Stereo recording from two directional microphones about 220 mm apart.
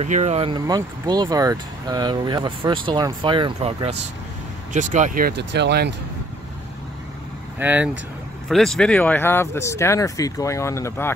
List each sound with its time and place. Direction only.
0.0 s speech: 30° right (ahead or behind); by 5.9 s 50° right (ahead or behind)
7.5 s speech: 10° right (ahead or behind); by 11.1 s 10° left (ahead or behind)